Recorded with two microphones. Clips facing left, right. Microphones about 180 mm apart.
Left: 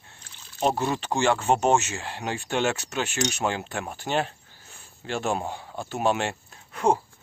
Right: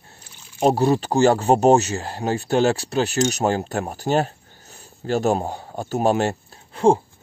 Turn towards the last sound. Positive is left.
turn(degrees=-30)  # may be behind; listen again after turning